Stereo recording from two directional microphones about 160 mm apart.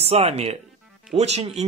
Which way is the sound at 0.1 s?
40° right (ahead or behind).